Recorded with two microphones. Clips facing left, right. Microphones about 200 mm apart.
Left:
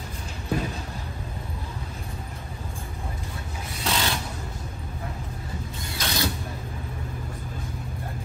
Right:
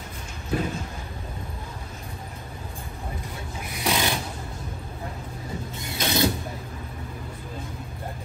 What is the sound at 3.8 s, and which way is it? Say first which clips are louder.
Filing: right 2 dB; 15° right (ahead or behind).